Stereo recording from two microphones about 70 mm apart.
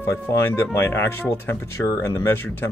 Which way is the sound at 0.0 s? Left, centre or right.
Left.